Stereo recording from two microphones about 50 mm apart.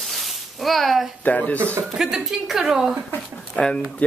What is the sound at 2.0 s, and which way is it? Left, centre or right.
Speech, centre.